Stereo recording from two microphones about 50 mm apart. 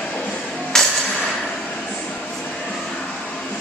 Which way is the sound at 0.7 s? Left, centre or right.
Centre.